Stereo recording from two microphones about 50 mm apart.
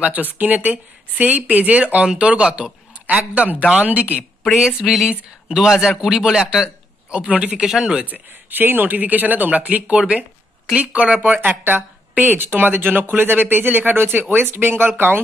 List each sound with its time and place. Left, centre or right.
0.0 s speech: right
4.6 s a man's voice: centre
7.5 s a man's voice: centre
7.8 s speech: centre
8.1 s speech: right